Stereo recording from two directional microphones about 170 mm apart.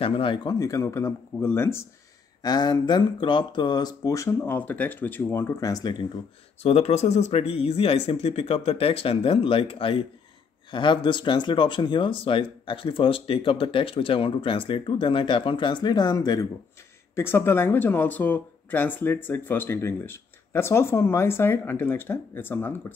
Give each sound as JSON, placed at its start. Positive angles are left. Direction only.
{"t": 0.0, "sound": "speech", "side_deg": 30}
{"t": 6.6, "sound": "speech", "side_deg": 40}